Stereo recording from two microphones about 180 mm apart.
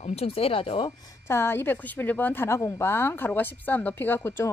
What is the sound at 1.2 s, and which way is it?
A woman's voice, 15° left (ahead or behind).